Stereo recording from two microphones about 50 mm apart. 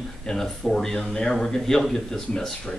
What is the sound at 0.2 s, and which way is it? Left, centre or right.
Speech, centre.